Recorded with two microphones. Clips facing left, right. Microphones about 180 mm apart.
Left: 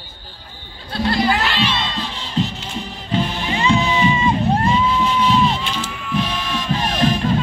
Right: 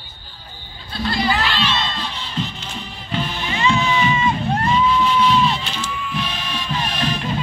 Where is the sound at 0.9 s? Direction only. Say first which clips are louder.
Left 3 dB; 60° left (ahead or behind).